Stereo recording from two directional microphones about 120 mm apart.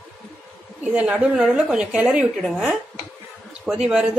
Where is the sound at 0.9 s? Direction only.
5° right (ahead or behind).